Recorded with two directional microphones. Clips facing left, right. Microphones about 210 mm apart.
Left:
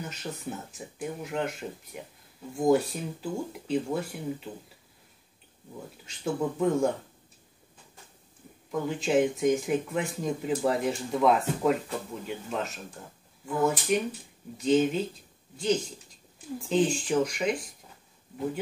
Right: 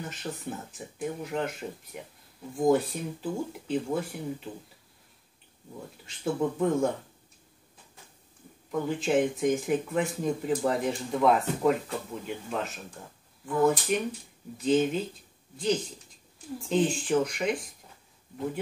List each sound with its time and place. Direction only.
0.0 s speech: centre (ahead or behind)
6.0 s speech: centre (ahead or behind)
8.7 s speech: centre (ahead or behind)